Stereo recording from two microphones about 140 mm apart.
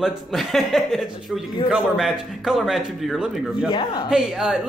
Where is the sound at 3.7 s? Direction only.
35° left (ahead or behind).